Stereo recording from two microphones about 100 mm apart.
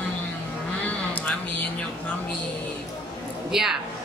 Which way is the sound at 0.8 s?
15° left (ahead or behind).